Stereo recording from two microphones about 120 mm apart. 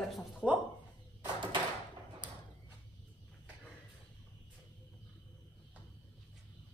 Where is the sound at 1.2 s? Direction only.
40° right (ahead or behind).